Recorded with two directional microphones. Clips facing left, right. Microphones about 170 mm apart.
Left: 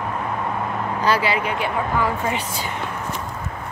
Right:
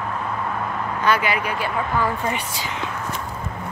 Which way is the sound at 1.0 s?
30° left (ahead or behind).